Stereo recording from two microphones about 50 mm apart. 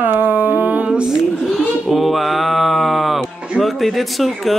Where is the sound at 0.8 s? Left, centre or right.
Centre.